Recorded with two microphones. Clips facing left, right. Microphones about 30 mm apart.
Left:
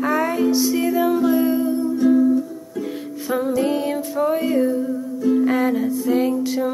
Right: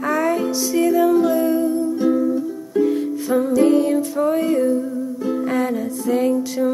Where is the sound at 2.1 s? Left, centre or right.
Centre.